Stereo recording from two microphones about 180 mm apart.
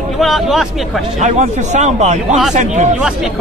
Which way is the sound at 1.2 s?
40° right (ahead or behind).